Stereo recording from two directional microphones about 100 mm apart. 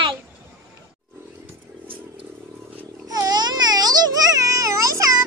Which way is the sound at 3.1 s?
40° right (ahead or behind).